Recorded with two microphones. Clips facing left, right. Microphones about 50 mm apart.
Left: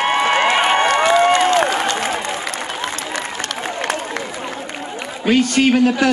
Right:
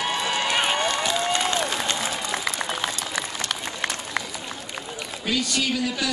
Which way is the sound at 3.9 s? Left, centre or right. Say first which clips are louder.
Left 10 dB; left.